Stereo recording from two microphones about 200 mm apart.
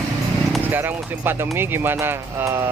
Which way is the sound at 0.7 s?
10° right (ahead or behind).